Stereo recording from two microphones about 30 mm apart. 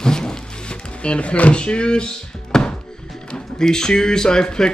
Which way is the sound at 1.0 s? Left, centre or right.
Left.